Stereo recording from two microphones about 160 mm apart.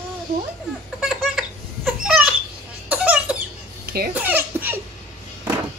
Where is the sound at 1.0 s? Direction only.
Centre (ahead or behind).